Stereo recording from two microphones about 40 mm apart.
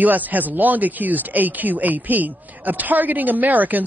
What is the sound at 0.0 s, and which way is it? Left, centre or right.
Speech, right.